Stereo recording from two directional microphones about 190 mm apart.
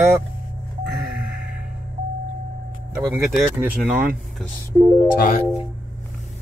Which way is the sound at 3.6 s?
10° right (ahead or behind).